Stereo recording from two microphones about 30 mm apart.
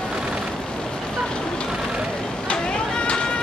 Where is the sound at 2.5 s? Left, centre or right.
Left.